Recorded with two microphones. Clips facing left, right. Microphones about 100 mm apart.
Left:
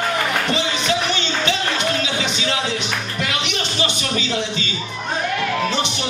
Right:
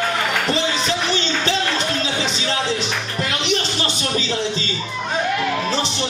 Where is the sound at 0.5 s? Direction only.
35° right (ahead or behind).